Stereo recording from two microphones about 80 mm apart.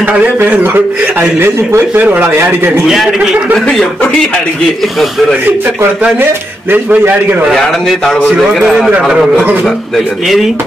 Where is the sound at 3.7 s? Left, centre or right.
Centre.